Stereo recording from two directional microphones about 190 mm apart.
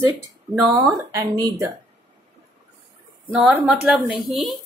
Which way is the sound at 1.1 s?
20° right (ahead or behind).